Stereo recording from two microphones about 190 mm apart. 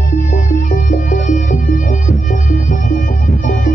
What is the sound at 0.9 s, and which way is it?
Music, 40° left (ahead or behind).